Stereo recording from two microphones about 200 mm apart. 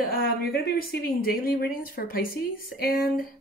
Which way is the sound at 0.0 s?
50° left (ahead or behind).